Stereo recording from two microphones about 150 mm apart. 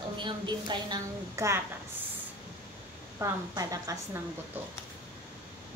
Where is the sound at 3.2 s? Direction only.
25° right (ahead or behind).